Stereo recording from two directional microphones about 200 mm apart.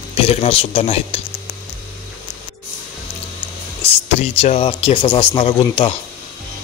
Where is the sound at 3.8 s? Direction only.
30° left (ahead or behind).